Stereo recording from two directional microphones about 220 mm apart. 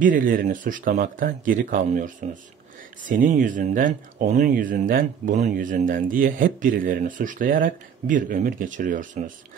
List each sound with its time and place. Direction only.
0.0 s speech: 40° right (ahead or behind)